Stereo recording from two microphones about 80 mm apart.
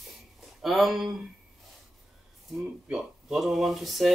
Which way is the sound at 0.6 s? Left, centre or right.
Centre.